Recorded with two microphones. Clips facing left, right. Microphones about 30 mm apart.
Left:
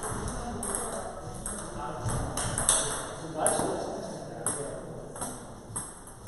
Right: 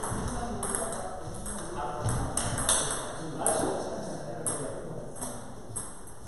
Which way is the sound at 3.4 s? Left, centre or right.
Centre.